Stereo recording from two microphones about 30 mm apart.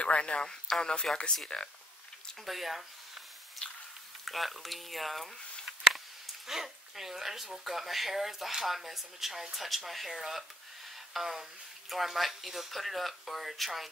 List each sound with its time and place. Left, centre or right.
0.0 s speech: left
0.5 s speech: left
1.5 s speech: left
2.4 s speech: centre
3.6 s squish: left
4.2 s speech: centre
5.9 s a sound: centre
7.6 s speech: centre